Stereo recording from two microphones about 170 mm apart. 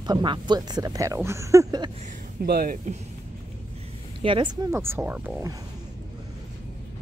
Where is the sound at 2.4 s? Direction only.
60° right (ahead or behind).